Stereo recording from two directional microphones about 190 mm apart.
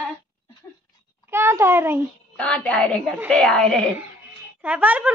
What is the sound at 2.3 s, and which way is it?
A woman's voice, 5° left (ahead or behind).